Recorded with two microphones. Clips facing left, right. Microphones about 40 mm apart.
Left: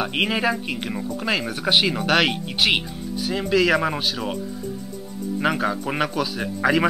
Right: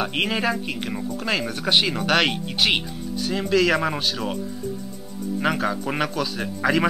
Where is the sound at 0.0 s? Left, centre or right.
Centre.